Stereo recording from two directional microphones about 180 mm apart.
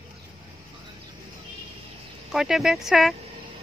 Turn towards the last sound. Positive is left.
turn(degrees=0)  # may be behind; listen again after turning